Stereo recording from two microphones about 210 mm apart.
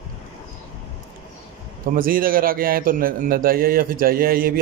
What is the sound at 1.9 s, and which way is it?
Speech, 40° right (ahead or behind).